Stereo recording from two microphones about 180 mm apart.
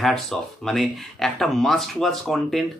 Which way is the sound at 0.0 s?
Centre (ahead or behind).